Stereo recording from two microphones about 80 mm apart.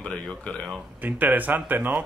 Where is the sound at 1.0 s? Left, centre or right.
Right.